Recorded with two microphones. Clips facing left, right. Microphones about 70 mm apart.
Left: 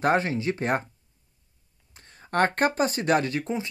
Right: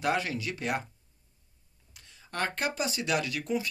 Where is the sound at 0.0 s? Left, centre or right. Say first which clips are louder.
Left 6 dB; left.